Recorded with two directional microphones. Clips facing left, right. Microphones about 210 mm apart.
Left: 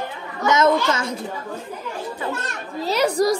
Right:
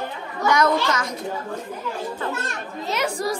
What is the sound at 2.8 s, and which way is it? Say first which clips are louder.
Speech: left 7 dB; 35° left (ahead or behind).